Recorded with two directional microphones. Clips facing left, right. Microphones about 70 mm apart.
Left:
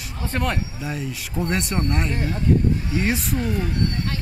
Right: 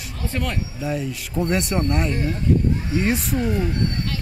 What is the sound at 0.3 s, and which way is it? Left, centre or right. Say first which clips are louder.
Speech: left 3 dB; left.